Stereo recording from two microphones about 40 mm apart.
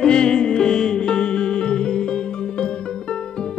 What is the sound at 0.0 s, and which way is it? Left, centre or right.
Music, centre.